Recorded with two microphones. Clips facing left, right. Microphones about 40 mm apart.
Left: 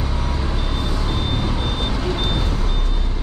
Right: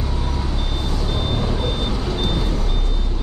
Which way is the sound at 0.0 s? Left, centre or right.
Centre.